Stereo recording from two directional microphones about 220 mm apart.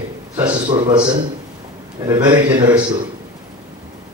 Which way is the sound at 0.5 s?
20° right (ahead or behind).